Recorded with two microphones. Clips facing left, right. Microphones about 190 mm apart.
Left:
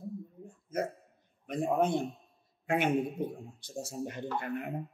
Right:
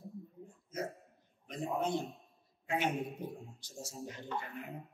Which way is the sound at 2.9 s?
Centre (ahead or behind).